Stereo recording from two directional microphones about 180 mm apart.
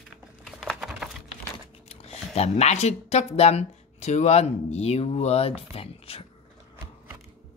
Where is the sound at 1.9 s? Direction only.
35° left (ahead or behind).